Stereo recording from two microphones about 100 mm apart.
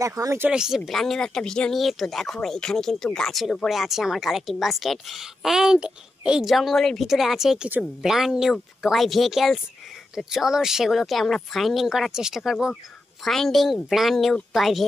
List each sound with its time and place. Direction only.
0.0 s speech: 35° right (ahead or behind)
0.5 s speech: 5° right (ahead or behind)